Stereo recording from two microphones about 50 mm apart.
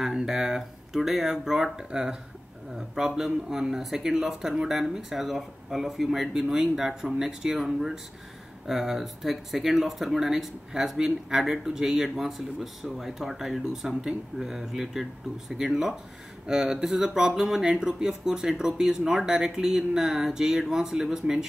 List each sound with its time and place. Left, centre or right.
0.0 s speech: centre